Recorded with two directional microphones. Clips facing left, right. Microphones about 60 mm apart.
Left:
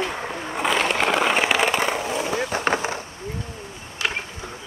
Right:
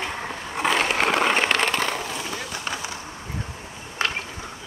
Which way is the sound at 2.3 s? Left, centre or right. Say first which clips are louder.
Left 8 dB; left.